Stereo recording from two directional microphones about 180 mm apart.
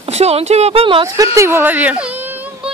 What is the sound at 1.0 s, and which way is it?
A child's voice, 15° right (ahead or behind).